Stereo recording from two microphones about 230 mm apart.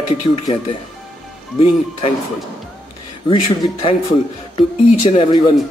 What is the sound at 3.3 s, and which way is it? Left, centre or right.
Speech, left.